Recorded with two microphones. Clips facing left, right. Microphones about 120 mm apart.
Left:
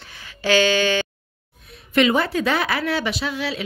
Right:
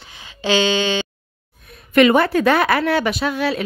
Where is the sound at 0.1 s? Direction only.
20° right (ahead or behind).